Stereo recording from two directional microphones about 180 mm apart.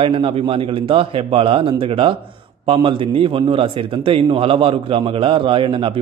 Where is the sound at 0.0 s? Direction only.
30° right (ahead or behind).